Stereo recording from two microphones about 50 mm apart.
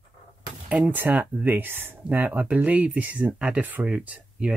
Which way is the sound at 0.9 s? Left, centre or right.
Right.